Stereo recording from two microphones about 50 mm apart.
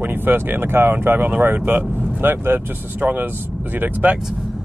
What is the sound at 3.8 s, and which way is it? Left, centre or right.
Speech, right.